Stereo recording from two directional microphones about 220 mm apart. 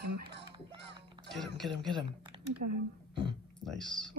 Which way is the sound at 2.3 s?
25° right (ahead or behind).